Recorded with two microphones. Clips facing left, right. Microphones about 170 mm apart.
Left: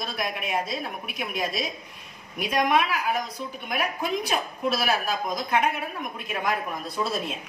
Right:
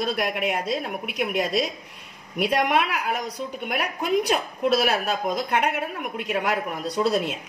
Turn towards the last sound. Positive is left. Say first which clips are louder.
# right 6 dB
turn(degrees=-70)  # may be behind; listen again after turning